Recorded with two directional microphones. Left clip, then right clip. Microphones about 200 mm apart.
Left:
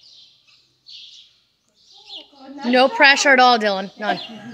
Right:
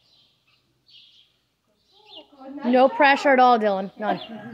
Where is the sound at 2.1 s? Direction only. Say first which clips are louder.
Left 3 dB; centre (ahead or behind).